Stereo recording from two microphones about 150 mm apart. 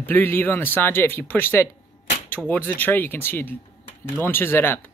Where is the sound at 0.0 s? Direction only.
15° left (ahead or behind).